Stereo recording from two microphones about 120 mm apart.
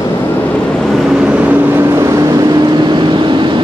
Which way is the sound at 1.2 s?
10° right (ahead or behind).